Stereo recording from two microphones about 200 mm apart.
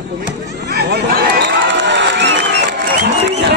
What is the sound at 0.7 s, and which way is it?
Crowd, 55° right (ahead or behind).